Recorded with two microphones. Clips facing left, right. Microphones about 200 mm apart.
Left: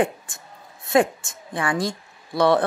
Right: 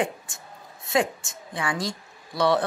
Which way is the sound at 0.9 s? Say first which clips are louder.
Left 5 dB; 55° left (ahead or behind).